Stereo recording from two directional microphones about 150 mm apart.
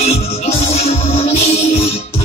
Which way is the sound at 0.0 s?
45° left (ahead or behind).